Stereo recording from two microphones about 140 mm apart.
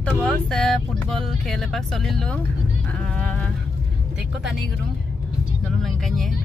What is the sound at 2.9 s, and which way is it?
Music, 10° left (ahead or behind).